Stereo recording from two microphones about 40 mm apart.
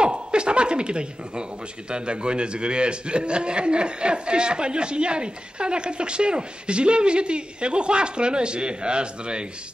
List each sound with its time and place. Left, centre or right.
0.0 s chuckle: right
1.9 s a man's voice: right